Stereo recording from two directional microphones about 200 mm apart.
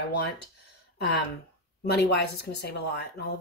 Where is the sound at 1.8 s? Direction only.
55° left (ahead or behind).